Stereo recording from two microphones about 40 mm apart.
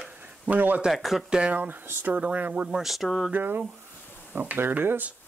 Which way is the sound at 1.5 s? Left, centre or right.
Right.